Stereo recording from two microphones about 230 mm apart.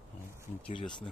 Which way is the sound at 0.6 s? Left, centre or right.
Left.